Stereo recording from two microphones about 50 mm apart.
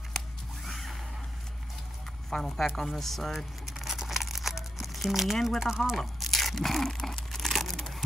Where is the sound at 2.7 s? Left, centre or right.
Centre.